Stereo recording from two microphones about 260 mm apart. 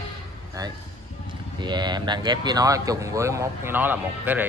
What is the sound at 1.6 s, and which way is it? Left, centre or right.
Speech, centre.